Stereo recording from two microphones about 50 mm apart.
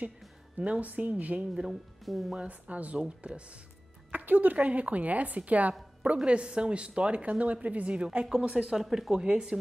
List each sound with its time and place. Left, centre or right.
0.6 s a woman's voice: right
1.5 s speech: centre
2.3 s a woman's voice: right
4.1 s a woman's voice: right; by 8.8 s centre
8.8 s speech: centre
9.1 s speech: centre